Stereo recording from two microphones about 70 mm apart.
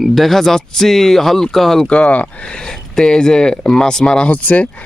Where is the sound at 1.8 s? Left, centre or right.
Centre.